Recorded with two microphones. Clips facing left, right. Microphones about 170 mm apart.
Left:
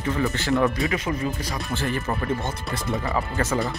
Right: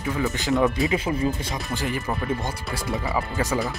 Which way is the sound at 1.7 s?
15° right (ahead or behind).